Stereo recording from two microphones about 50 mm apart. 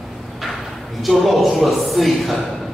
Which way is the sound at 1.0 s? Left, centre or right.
Centre.